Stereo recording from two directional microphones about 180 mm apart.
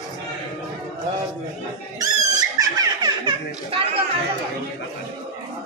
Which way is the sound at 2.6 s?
20° right (ahead or behind).